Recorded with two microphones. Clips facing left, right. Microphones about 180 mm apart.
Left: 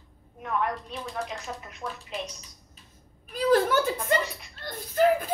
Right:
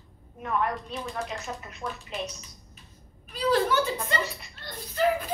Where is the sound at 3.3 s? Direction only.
50° left (ahead or behind).